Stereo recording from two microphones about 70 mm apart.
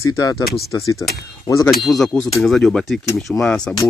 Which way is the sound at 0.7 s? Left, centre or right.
Left.